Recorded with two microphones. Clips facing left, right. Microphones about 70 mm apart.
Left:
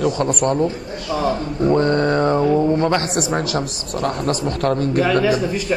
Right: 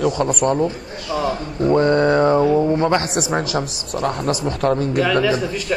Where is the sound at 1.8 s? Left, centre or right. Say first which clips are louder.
Right 5 dB; centre.